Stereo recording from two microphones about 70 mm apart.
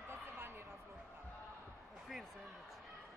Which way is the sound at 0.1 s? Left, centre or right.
Right.